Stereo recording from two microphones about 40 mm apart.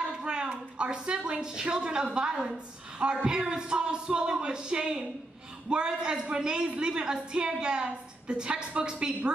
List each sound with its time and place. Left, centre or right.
0.0 s a woman's voice: right